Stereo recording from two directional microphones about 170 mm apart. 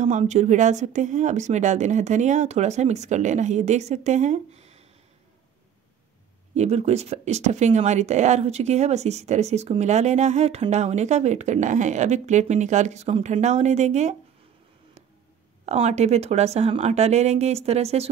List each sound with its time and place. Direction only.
0.0 s speech: 45° right (ahead or behind)
6.5 s speech: 40° right (ahead or behind)
15.6 s speech: 40° right (ahead or behind)